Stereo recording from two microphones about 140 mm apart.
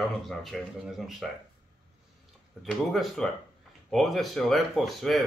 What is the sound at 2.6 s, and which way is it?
Speech, centre (ahead or behind).